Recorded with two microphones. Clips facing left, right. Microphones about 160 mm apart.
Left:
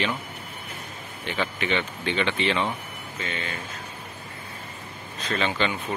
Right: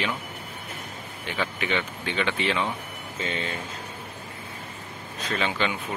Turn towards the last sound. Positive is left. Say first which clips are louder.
# left 1 dB
turn(degrees=-5)  # may be behind; listen again after turning